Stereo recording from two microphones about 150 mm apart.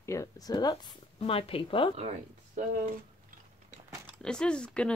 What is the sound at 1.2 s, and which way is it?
Speech, 40° left (ahead or behind).